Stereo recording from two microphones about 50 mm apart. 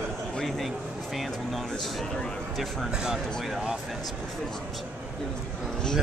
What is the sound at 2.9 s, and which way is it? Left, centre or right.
Speech, centre.